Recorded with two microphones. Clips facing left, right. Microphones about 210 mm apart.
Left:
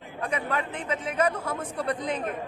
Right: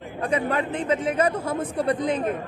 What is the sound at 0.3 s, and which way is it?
A man's voice, 30° right (ahead or behind).